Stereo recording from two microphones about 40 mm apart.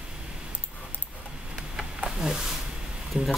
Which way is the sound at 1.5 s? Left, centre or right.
Centre.